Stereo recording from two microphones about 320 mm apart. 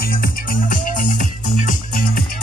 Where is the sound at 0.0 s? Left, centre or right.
Left.